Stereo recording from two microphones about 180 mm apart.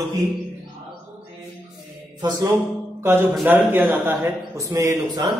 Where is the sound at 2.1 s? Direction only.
25° right (ahead or behind).